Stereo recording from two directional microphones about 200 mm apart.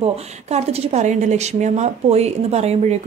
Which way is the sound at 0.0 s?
30° right (ahead or behind).